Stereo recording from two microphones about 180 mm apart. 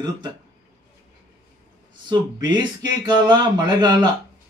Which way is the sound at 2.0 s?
25° right (ahead or behind).